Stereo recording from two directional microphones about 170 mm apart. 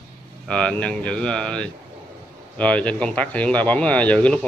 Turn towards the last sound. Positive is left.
turn(degrees=10)  # may be behind; listen again after turning